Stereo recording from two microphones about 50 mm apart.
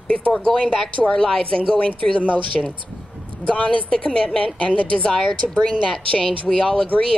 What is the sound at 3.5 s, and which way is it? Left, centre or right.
A woman's voice, left.